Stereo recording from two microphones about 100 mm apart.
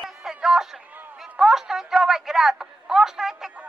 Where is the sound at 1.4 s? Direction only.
5° right (ahead or behind).